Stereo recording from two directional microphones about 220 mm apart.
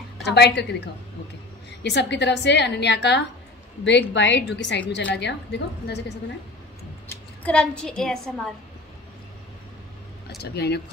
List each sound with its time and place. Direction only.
0.2 s a woman's voice: 50° left (ahead or behind)
7.4 s a woman's voice: 5° left (ahead or behind)
10.4 s a woman's voice: 50° left (ahead or behind)